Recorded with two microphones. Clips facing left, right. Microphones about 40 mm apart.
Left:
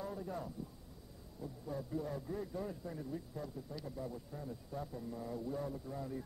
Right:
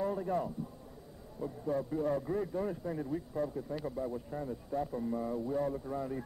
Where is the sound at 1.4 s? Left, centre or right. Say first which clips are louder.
Right 9 dB; right.